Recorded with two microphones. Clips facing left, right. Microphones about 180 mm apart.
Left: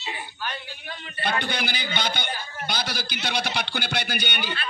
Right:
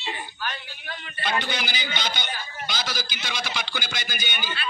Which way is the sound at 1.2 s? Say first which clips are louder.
Left 1 dB; 55° left (ahead or behind).